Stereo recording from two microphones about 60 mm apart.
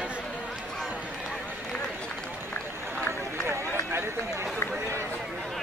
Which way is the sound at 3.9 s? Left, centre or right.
Right.